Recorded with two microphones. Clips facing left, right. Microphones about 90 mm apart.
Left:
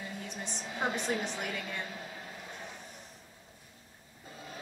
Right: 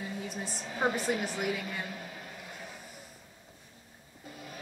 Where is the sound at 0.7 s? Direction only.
35° right (ahead or behind).